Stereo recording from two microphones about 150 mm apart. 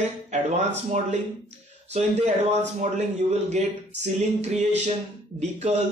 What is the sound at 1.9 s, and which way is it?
A man's voice, 50° right (ahead or behind).